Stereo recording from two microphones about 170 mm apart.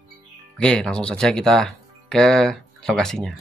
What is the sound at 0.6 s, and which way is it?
Speech, 5° left (ahead or behind).